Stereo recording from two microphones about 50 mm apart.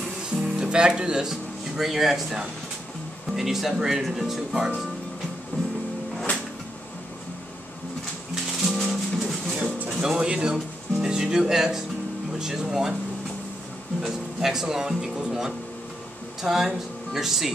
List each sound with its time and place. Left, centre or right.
0.4 s music: centre
1.3 s speech: centre
8.6 s music: centre
9.8 s music: centre
12.4 s speech: centre
14.0 s speech: centre